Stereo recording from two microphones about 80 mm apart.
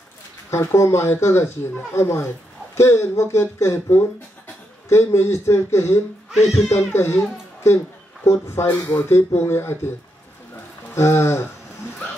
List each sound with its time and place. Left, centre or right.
0.5 s speech: left
11.0 s speech: left